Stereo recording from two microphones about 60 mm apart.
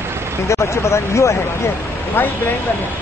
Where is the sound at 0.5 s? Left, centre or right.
Left.